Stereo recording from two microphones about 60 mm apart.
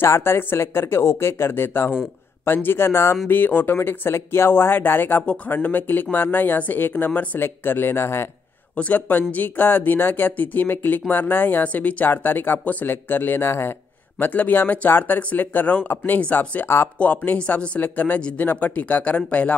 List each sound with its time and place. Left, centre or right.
0.0 s speech: left
3.3 s speech: left
8.7 s speech: left
16.6 s speech: left
17.0 s speech: left
17.7 s speech: left